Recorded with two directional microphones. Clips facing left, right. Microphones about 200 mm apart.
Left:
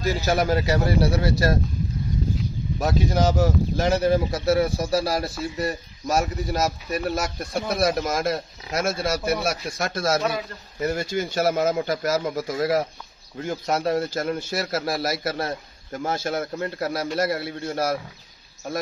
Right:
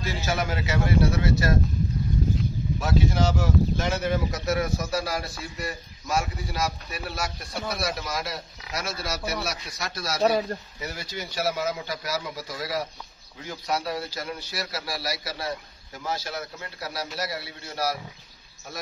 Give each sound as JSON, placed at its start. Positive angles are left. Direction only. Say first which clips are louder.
{"t": 0.0, "sound": "speech", "louder": "left 6 dB", "side_deg": 40}
{"t": 2.8, "sound": "speech", "louder": "left 3 dB", "side_deg": 40}